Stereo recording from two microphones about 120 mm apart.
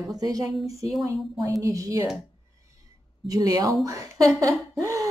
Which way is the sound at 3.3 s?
30° right (ahead or behind).